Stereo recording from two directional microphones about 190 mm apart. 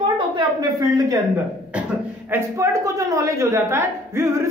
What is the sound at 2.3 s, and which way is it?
A man's voice, 15° right (ahead or behind).